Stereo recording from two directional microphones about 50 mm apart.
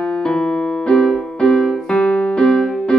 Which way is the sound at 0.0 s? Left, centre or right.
Centre.